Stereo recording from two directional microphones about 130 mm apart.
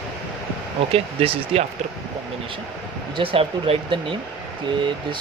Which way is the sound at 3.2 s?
45° right (ahead or behind).